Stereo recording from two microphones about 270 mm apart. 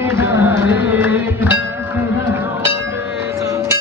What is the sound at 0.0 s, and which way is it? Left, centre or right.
Music, centre.